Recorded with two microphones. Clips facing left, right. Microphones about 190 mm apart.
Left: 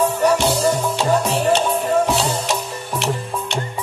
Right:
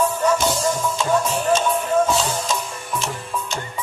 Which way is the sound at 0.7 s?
70° left (ahead or behind).